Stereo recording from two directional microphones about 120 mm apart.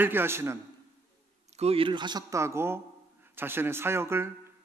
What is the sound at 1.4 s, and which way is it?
Speech, 60° right (ahead or behind).